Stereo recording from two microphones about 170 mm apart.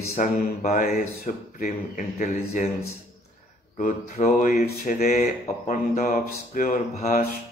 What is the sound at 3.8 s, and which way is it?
Speech, 50° left (ahead or behind).